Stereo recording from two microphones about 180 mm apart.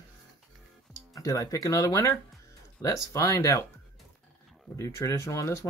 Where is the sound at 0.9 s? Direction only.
20° left (ahead or behind).